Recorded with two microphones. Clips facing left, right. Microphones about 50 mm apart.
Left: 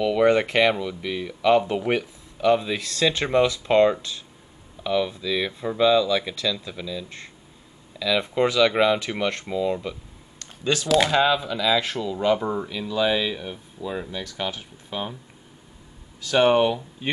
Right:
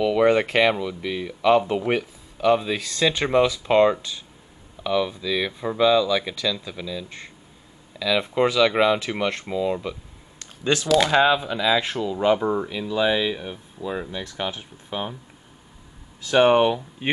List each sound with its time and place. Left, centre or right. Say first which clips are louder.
0.0 s speech: right 1 dB; centre
11.1 s speech: right 2 dB; centre
16.2 s speech: right 2 dB; right